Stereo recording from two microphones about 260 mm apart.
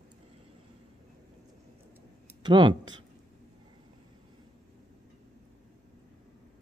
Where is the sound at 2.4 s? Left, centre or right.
Centre.